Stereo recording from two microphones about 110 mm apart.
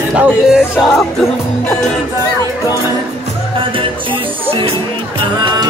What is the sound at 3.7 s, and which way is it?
Music, 50° right (ahead or behind).